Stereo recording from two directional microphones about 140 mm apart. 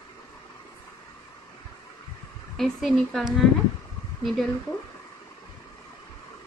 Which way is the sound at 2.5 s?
Centre (ahead or behind).